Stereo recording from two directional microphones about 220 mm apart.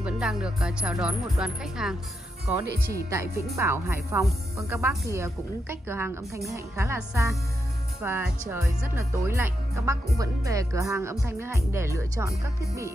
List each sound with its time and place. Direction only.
0.0 s speech: 5° right (ahead or behind)
2.6 s speech: 45° right (ahead or behind)
3.5 s speech: 10° right (ahead or behind)